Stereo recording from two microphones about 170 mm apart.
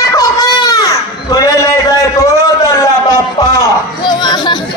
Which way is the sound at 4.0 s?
25° left (ahead or behind).